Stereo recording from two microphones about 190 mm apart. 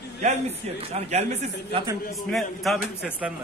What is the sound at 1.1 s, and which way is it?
Speech, 35° right (ahead or behind).